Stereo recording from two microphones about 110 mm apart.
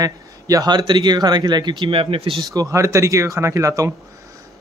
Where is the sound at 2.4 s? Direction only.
35° right (ahead or behind).